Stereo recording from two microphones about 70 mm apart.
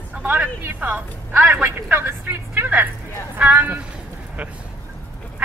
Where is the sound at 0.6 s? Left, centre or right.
Right.